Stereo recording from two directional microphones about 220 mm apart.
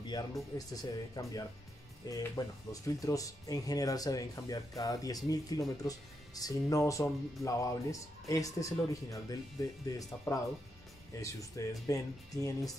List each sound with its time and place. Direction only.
0.0 s speech: 20° left (ahead or behind)